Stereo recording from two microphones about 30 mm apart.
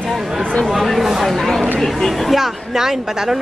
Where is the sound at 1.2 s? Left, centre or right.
Centre.